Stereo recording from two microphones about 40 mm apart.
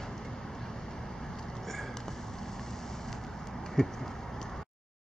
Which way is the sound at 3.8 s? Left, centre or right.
Centre.